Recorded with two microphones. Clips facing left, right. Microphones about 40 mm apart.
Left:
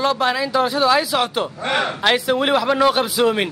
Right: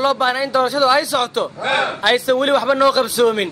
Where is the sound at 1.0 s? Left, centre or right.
Centre.